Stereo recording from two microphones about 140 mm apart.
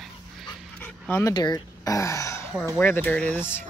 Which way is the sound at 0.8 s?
10° left (ahead or behind).